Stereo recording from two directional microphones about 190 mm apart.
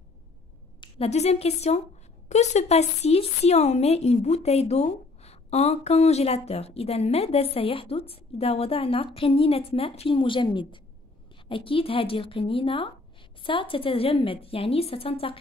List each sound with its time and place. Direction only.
0.7 s a woman's voice: 30° left (ahead or behind)